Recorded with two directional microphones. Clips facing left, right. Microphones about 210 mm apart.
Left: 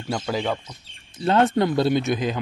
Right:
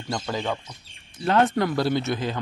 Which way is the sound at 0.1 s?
10° left (ahead or behind).